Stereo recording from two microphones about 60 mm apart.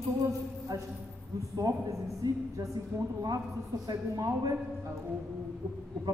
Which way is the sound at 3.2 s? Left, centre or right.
Right.